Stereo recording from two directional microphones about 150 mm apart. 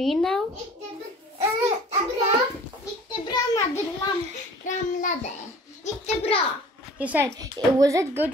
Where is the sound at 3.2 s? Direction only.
25° left (ahead or behind).